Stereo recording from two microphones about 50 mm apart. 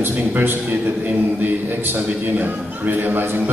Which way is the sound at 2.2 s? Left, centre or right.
Right.